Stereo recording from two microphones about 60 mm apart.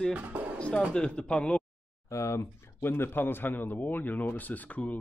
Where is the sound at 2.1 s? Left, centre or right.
Left.